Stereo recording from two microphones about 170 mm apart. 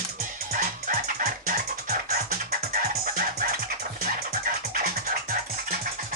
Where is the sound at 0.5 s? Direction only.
55° right (ahead or behind).